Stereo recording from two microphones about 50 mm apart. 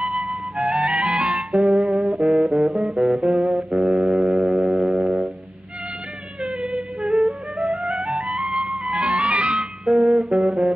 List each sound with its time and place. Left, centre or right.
0.1 s music: centre
0.7 s music: centre
0.9 s music: right
1.5 s music: centre
3.7 s foghorn: centre
4.7 s music: centre
6.4 s yodeling: centre
7.1 s music: centre
9.8 s music: centre